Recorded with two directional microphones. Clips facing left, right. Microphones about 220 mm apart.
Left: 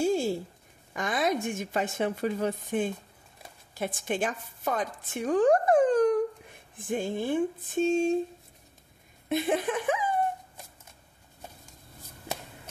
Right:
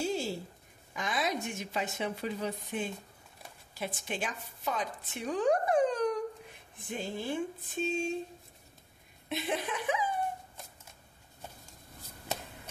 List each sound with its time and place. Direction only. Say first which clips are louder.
0.0 s a sound: left 7 dB; 50° left (ahead or behind)
0.9 s a woman's voice: left 5 dB; 50° left (ahead or behind)
9.3 s a woman's voice: left 7 dB; 50° left (ahead or behind)